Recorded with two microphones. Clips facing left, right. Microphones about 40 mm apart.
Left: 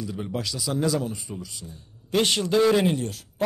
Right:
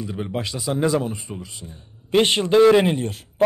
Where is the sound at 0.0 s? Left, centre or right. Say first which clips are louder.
Right 3 dB; right.